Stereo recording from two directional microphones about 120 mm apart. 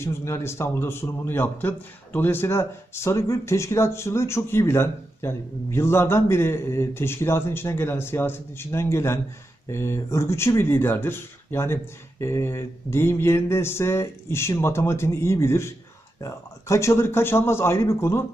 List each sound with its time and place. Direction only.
0.0 s a man's voice: 20° left (ahead or behind)